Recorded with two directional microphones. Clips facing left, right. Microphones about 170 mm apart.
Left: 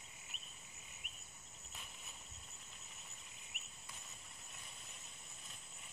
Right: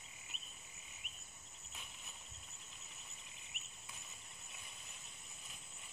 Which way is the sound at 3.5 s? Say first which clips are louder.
Left 1 dB; 50° left (ahead or behind).